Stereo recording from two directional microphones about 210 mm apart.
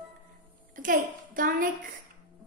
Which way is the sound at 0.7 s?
40° right (ahead or behind).